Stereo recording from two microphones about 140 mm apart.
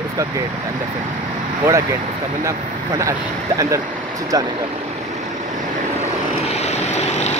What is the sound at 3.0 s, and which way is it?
Speech, 25° right (ahead or behind).